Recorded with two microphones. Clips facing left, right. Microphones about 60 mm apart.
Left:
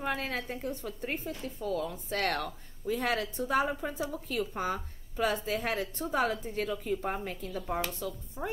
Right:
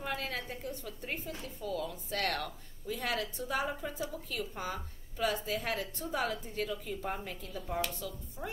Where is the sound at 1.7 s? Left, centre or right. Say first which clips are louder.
Left 1 dB; left.